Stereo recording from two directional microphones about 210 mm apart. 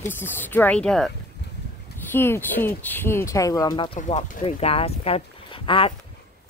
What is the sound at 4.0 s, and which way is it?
Speech, 35° left (ahead or behind).